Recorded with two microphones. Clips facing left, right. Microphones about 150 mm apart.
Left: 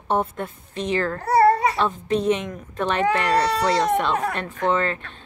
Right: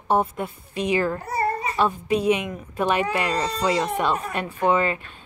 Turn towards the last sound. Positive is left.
turn(degrees=-10)  # may be behind; listen again after turning